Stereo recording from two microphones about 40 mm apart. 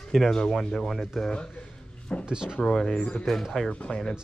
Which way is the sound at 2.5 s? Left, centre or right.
Centre.